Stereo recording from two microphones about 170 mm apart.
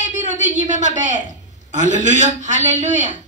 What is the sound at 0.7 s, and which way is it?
A woman's voice, 45° right (ahead or behind).